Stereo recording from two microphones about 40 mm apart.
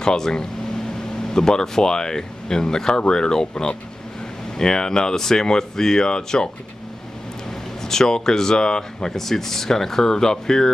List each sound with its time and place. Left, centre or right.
0.0 s speech: centre
7.8 s speech: centre
9.1 s speech: centre